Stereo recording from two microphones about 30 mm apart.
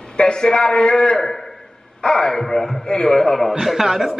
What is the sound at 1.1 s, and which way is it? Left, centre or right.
A man's voice, centre.